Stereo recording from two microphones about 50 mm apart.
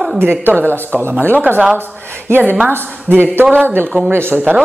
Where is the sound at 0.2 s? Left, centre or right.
Right.